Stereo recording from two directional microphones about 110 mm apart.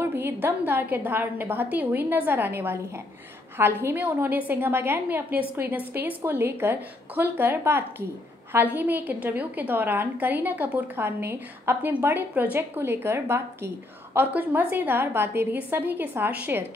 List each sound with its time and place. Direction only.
0.0 s a woman's voice: 20° right (ahead or behind)